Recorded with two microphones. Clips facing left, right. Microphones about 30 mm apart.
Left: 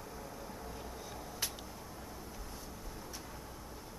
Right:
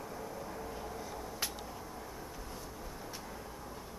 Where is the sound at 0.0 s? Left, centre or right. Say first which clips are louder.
Right 4 dB; centre.